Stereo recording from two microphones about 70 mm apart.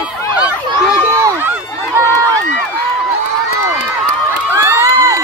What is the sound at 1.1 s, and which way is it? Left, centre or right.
Run, right.